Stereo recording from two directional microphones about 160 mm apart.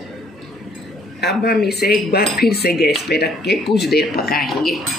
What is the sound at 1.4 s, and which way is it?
Speech, 80° left.